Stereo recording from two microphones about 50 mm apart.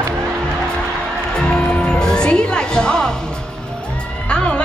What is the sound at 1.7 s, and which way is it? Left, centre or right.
Music, centre.